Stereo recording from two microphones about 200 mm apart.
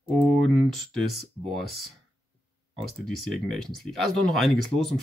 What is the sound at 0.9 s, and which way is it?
Speech, centre (ahead or behind).